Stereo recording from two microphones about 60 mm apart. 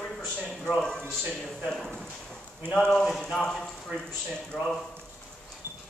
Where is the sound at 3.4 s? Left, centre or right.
Centre.